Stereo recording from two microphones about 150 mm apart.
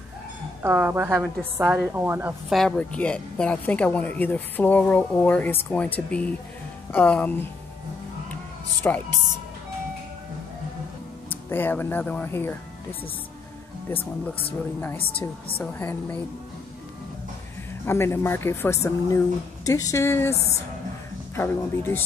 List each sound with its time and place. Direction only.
0.6 s a woman's voice: 15° right (ahead or behind)
2.5 s speech: 5° left (ahead or behind)
8.8 s speech: 10° left (ahead or behind)
11.2 s speech: 15° left (ahead or behind)
15.6 s speech: 10° left (ahead or behind)
17.8 s a woman's voice: 15° left (ahead or behind)
21.4 s speech: 15° left (ahead or behind)